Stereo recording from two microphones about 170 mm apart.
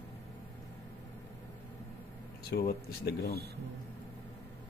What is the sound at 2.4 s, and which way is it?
Speech, 70° left (ahead or behind).